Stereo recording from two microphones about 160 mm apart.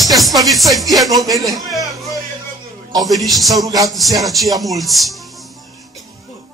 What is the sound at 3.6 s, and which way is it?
Speech, 20° right (ahead or behind).